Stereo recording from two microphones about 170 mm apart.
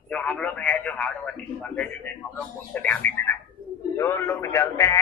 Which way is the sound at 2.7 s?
10° left (ahead or behind).